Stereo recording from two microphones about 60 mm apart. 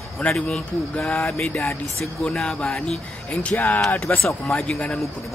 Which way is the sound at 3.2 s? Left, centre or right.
Left.